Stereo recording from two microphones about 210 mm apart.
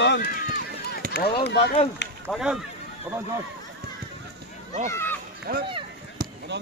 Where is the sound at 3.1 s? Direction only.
15° right (ahead or behind).